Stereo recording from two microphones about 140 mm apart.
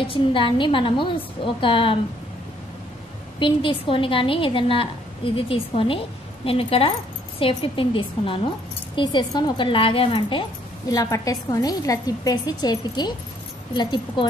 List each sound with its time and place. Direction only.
0.1 s a woman's voice: 35° left (ahead or behind)
3.3 s a woman's voice: 35° left (ahead or behind)
10.9 s a woman's voice: 25° left (ahead or behind)